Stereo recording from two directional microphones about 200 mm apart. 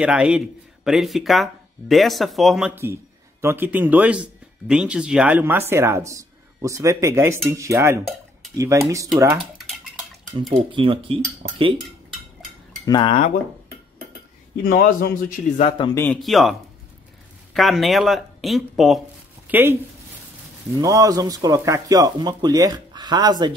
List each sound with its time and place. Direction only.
0.0 s speech: 5° right (ahead or behind)
10.5 s speech: 25° right (ahead or behind)
12.8 s speech: 20° left (ahead or behind)
14.6 s a man's voice: 45° left (ahead or behind)
15.8 s a man's voice: 15° left (ahead or behind)
16.2 s speech: centre (ahead or behind)
17.6 s speech: centre (ahead or behind); by 23.5 s 20° right (ahead or behind)